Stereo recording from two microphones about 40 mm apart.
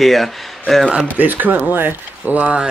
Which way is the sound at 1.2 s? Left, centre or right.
Right.